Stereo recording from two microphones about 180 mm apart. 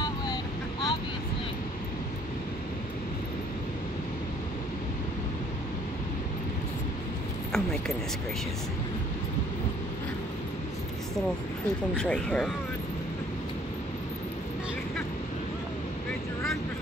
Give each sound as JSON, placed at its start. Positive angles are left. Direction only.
{"t": 0.0, "sound": "vehicle", "side_deg": 25}
{"t": 7.5, "sound": "a sound", "side_deg": 5}
{"t": 11.9, "sound": "speech", "side_deg": 5}